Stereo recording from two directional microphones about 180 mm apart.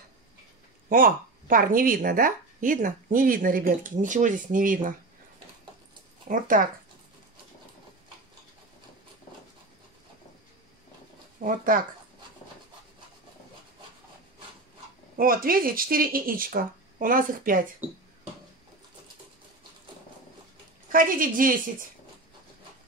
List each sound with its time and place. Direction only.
0.8 s speech: 50° right (ahead or behind)
6.2 s speech: 50° right (ahead or behind)
11.3 s speech: 50° right (ahead or behind)
15.1 s speech: 55° right (ahead or behind)
20.9 s speech: 50° right (ahead or behind)